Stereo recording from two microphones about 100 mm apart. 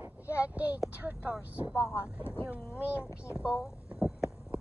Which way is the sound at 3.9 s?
5° right (ahead or behind).